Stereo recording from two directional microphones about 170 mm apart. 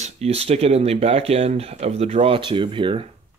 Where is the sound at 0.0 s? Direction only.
35° right (ahead or behind).